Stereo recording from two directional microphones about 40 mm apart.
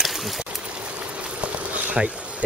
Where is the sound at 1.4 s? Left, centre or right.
Right.